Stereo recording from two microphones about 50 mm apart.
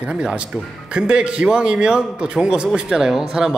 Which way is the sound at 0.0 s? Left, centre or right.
Centre.